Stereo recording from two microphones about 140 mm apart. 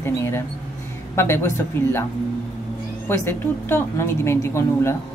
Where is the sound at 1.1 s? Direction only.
20° left (ahead or behind).